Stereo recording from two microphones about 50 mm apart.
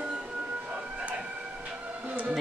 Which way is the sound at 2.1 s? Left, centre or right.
Right.